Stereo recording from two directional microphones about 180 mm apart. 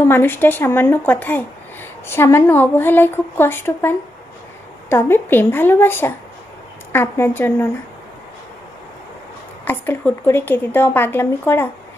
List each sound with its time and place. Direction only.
0.0 s a woman's voice: 10° left (ahead or behind)
9.7 s a woman's voice: 10° left (ahead or behind)